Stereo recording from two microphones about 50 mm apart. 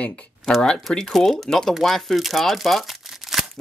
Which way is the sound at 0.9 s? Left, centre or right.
Centre.